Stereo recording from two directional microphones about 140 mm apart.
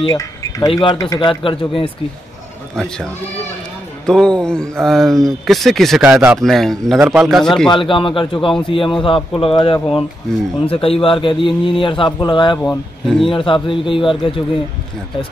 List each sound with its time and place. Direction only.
0.0 s a man's voice: 30° left (ahead or behind)
2.7 s mantra: centre (ahead or behind)
7.7 s a man's voice: 35° left (ahead or behind)
12.6 s mantra: centre (ahead or behind)
13.3 s a man's voice: 40° left (ahead or behind)